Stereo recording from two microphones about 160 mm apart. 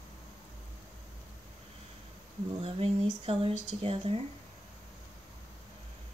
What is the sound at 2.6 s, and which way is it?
Speech, 35° right (ahead or behind).